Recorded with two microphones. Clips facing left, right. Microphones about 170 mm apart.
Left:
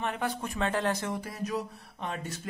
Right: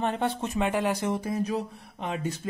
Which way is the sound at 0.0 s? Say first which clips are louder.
Right 5 dB; 30° right (ahead or behind).